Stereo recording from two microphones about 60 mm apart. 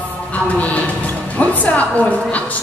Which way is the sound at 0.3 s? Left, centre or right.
Left.